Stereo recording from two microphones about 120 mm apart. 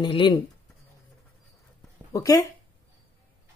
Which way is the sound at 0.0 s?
40° left (ahead or behind).